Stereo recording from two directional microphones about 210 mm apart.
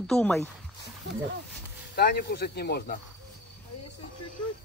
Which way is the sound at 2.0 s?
50° left (ahead or behind).